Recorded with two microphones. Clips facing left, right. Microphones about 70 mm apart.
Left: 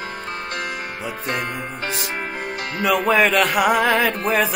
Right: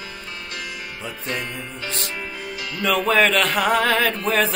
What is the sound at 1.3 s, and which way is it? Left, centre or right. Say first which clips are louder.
Music: left 3 dB; left.